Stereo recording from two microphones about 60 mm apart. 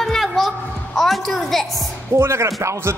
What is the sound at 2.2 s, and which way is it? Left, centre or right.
Speech, right.